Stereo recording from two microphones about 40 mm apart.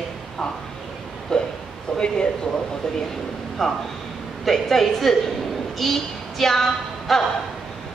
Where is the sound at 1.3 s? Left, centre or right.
Centre.